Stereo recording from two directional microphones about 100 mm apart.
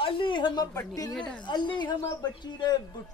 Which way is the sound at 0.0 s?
55° left (ahead or behind).